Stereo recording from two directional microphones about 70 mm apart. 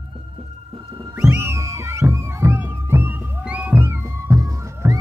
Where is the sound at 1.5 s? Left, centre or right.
Right.